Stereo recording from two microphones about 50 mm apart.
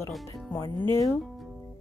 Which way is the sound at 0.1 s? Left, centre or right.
Centre.